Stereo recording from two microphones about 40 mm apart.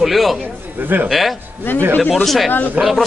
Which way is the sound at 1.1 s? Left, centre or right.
Centre.